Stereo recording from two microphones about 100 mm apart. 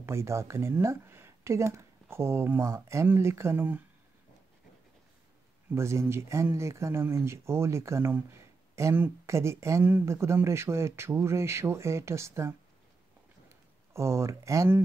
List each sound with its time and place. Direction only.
0.0 s speech: 25° right (ahead or behind)
5.8 s speech: 30° right (ahead or behind)
13.5 s a sound: 30° right (ahead or behind)